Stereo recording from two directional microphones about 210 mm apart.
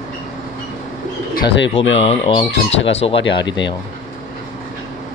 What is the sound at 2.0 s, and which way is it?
Speech, 30° left (ahead or behind).